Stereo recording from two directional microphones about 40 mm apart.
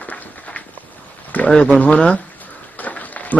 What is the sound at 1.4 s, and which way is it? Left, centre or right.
Speech, left.